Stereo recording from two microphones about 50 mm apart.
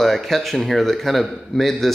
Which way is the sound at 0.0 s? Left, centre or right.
Centre.